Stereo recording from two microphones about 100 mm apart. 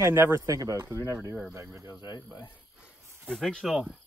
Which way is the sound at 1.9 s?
40° left (ahead or behind).